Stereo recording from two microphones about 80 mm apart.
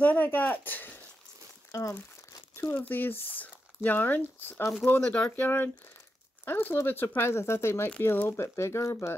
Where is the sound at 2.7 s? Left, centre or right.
Left.